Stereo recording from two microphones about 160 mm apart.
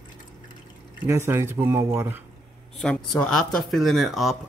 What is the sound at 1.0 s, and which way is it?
Speech, 15° right (ahead or behind).